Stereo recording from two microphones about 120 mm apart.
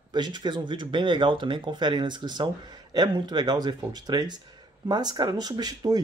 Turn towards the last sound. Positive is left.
turn(degrees=-35)  # may be behind; listen again after turning